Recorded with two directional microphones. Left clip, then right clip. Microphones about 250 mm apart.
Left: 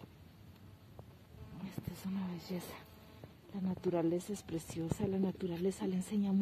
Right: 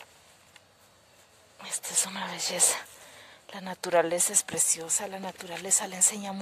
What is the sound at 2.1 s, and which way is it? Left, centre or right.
Speech, right.